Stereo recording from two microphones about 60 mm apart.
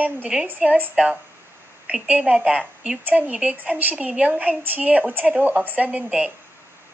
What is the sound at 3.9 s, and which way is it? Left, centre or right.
Speech, centre.